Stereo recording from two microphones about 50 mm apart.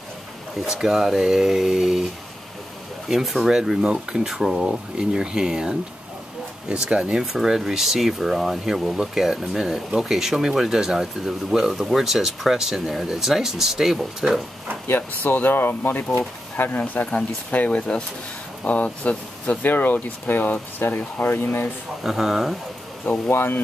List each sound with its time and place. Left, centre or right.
0.7 s speech: centre
3.1 s speech: centre
7.3 s speech: centre
14.9 s speech: left
22.0 s speech: centre
23.3 s speech: left